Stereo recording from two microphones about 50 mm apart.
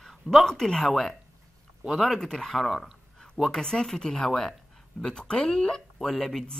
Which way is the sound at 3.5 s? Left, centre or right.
Centre.